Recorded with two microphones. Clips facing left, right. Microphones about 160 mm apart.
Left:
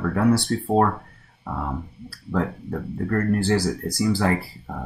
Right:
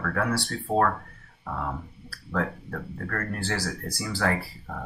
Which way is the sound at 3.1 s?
15° left (ahead or behind).